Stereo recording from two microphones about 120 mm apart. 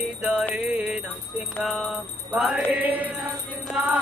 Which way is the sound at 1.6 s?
5° right (ahead or behind).